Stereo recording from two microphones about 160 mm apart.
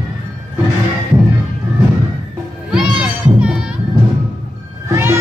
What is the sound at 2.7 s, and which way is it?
Music, 5° right (ahead or behind).